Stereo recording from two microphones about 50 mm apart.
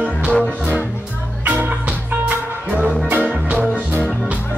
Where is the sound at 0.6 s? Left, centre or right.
Right.